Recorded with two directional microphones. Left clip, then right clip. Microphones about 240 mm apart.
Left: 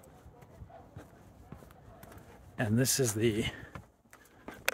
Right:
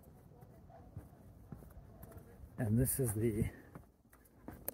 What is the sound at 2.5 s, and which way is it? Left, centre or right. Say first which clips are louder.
Speech: left 8 dB; left.